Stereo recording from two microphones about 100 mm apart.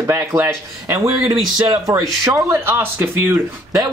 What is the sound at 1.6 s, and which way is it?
Speech, 40° right (ahead or behind).